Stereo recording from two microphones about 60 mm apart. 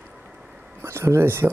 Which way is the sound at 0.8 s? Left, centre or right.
Right.